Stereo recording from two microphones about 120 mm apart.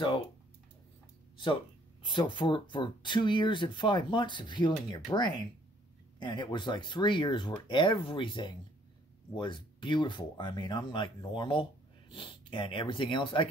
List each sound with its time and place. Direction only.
2.0 s speech: 40° left (ahead or behind)